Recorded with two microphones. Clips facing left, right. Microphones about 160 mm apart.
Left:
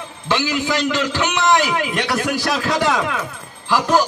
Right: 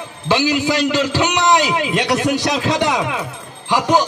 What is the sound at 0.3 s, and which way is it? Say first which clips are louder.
A man's voice: right 4 dB; 15° right (ahead or behind).